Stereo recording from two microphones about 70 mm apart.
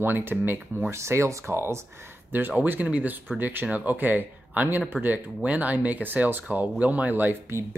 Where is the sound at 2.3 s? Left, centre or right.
Right.